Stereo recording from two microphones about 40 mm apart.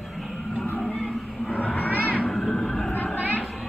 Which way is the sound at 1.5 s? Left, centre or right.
Left.